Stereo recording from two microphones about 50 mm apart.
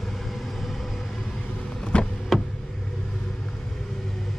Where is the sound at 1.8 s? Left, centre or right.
Centre.